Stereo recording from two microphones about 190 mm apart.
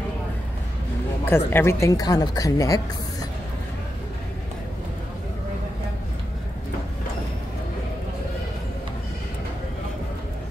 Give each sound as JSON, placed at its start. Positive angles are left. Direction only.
{"t": 1.2, "sound": "speech", "side_deg": 10}